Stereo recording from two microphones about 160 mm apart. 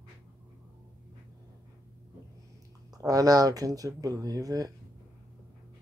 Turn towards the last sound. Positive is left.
turn(degrees=-25)  # may be behind; listen again after turning